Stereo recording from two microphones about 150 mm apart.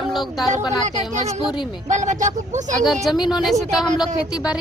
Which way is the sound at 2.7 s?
Centre (ahead or behind).